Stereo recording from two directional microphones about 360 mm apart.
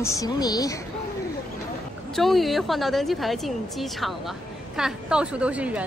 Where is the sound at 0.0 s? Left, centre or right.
Centre.